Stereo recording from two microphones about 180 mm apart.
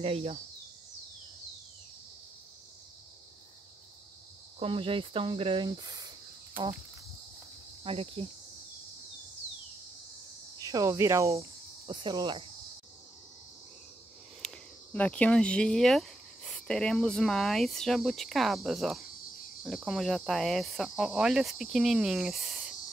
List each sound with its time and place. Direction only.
0.0 s cricket: 35° right (ahead or behind)
4.6 s speech: 30° right (ahead or behind)
7.8 s cricket: 30° right (ahead or behind)
10.6 s cricket: 20° right (ahead or behind)
11.9 s speech: 25° right (ahead or behind)
14.4 s speech: 5° left (ahead or behind)